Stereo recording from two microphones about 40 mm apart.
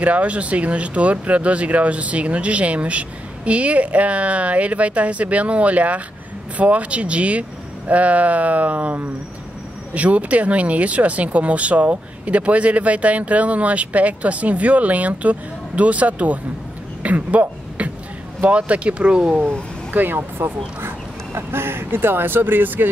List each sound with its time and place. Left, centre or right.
0.0 s speech: right
17.0 s a sound: right
18.5 s speech: right
19.9 s speech: right
21.4 s speech: right